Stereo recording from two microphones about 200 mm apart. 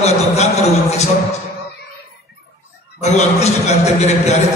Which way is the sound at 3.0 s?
35° left (ahead or behind).